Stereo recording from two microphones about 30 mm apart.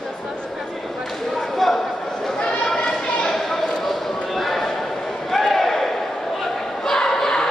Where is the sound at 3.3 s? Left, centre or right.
Centre.